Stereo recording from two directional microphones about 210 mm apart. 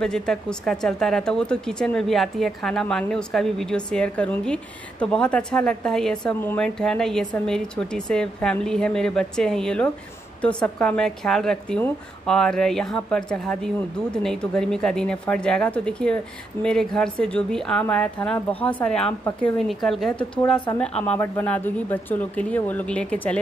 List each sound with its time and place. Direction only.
0.0 s speech: 5° left (ahead or behind)